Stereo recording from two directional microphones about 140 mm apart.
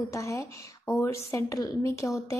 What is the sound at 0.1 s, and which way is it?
A woman's voice, 20° left (ahead or behind).